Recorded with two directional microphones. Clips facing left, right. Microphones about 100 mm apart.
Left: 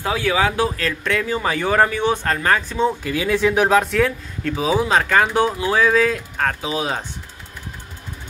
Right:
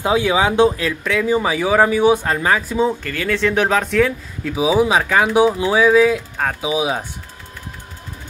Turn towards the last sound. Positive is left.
turn(degrees=-10)  # may be behind; listen again after turning